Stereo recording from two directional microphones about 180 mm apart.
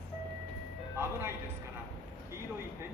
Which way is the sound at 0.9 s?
15° right (ahead or behind).